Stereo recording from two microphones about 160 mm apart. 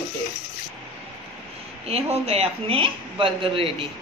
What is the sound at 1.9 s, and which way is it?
Speech, 40° right (ahead or behind).